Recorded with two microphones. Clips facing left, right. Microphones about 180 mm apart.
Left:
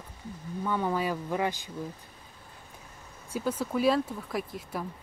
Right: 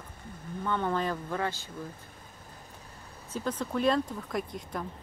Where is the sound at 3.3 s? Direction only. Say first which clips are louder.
Left 2 dB; 10° left (ahead or behind).